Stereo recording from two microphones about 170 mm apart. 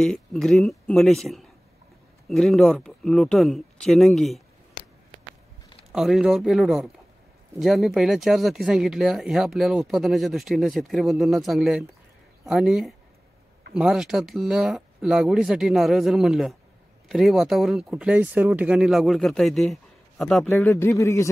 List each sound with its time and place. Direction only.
0.0 s speech: 5° left (ahead or behind)
5.9 s speech: centre (ahead or behind)
20.5 s speech: 15° left (ahead or behind)